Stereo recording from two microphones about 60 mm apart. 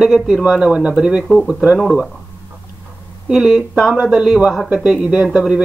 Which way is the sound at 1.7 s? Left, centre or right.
Centre.